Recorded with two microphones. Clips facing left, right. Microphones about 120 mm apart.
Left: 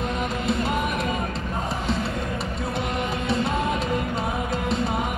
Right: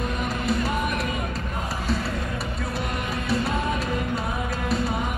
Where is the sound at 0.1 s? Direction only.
25° left (ahead or behind).